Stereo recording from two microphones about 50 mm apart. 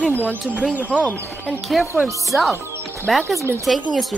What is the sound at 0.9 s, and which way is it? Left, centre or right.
Speech, left.